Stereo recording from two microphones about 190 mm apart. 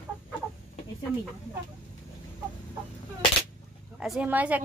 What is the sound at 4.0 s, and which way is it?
Speech, 5° right (ahead or behind).